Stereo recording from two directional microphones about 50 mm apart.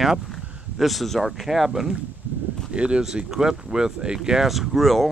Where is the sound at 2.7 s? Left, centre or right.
Centre.